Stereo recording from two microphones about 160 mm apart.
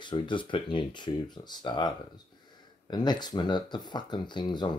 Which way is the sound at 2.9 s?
25° left (ahead or behind).